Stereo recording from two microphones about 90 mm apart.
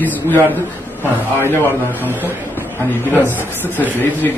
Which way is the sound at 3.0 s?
20° left (ahead or behind).